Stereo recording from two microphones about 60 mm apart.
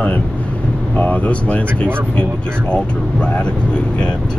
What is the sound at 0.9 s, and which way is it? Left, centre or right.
Speech, left.